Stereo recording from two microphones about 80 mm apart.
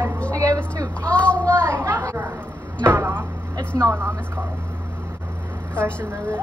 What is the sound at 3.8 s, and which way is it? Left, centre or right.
Speech, right.